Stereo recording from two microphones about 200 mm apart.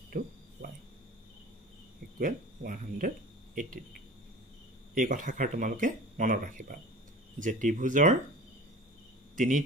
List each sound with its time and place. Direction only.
0.1 s speech: 45° right (ahead or behind)
2.1 s speech: 45° right (ahead or behind)
4.9 s speech: 40° right (ahead or behind)